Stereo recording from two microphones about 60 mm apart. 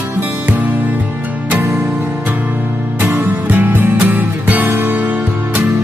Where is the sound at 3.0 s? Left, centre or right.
Right.